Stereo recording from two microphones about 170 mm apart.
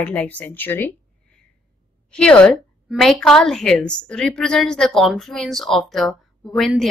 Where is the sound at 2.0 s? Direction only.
5° left (ahead or behind).